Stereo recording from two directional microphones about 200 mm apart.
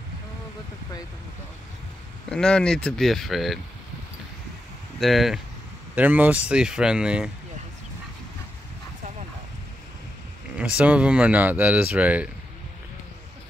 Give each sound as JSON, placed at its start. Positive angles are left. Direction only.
{"t": 2.3, "sound": "speech", "side_deg": 5}
{"t": 5.0, "sound": "speech", "side_deg": 0}
{"t": 10.8, "sound": "speech", "side_deg": -5}